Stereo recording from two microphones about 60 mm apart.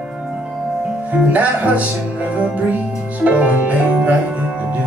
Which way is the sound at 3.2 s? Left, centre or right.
Right.